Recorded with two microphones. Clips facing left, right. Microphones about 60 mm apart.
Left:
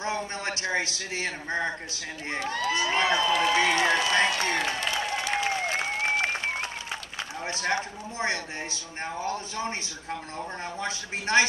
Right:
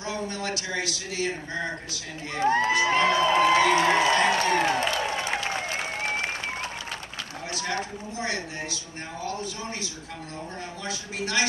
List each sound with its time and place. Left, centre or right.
0.0 s a man's voice: left
2.4 s crowd: right
3.9 s speech: right
5.0 s applause: right
5.7 s applause: left
7.7 s speech: left
10.8 s speech: left